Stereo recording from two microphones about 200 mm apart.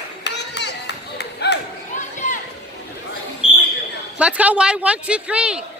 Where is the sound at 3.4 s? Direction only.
5° right (ahead or behind).